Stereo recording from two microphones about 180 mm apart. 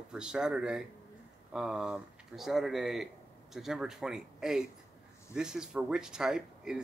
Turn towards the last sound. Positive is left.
turn(degrees=-5)  # may be behind; listen again after turning